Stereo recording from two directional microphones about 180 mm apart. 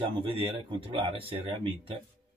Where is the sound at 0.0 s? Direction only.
30° right (ahead or behind).